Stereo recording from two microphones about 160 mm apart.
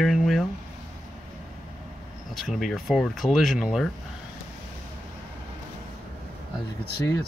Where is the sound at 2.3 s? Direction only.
Centre (ahead or behind).